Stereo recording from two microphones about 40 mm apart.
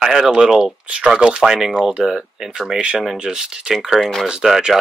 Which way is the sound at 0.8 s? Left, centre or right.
Right.